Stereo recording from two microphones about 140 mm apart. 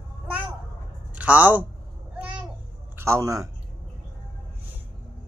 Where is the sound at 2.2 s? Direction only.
10° right (ahead or behind).